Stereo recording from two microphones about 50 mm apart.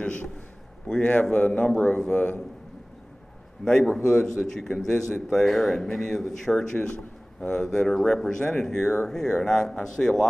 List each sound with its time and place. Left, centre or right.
0.0 s a sound: left
0.8 s speech: centre
1.3 s a man's voice: left
3.6 s speech: centre
6.8 s speech: left